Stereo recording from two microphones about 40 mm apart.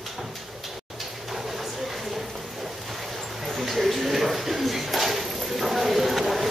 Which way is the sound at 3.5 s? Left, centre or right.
Centre.